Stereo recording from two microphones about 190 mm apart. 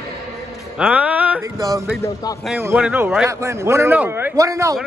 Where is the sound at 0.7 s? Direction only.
5° right (ahead or behind).